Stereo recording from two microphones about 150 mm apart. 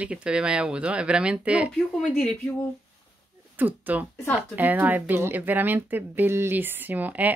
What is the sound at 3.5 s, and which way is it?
Speech, 10° right (ahead or behind).